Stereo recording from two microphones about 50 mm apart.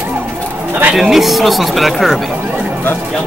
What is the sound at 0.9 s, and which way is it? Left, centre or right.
Speech, centre.